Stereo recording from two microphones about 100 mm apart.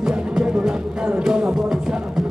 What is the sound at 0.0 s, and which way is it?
Music, 5° right (ahead or behind).